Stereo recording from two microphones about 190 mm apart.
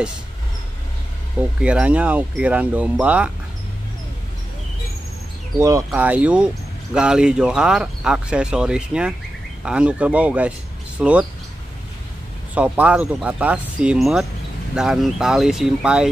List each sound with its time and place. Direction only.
1.4 s speech: 5° right (ahead or behind)
5.6 s speech: 15° right (ahead or behind)
12.5 s speech: 5° right (ahead or behind)